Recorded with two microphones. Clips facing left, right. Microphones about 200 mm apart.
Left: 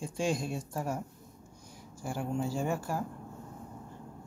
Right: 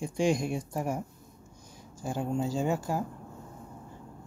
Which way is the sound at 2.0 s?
20° right (ahead or behind).